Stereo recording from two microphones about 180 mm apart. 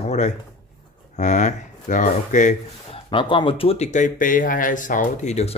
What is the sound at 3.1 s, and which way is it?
Speech, 30° left (ahead or behind).